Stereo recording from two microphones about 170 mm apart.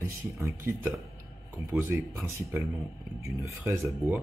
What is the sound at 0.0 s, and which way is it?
Speech, 15° right (ahead or behind).